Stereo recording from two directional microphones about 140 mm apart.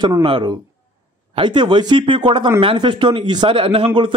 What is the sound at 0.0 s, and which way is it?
A man's voice, 35° right (ahead or behind).